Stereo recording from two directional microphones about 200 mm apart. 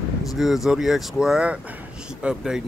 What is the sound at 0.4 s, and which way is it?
Speech, centre (ahead or behind).